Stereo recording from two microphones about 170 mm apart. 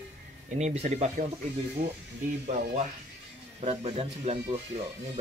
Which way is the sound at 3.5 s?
35° right (ahead or behind).